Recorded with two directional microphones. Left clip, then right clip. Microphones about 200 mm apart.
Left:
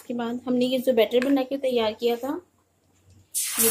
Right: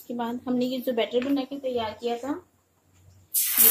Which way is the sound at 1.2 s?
40° left (ahead or behind).